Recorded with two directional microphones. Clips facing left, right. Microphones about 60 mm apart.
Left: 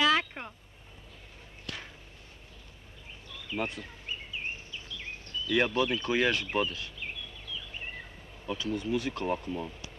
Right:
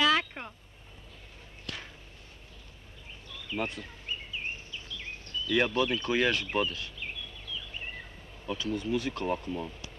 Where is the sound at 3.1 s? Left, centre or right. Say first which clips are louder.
Even; left.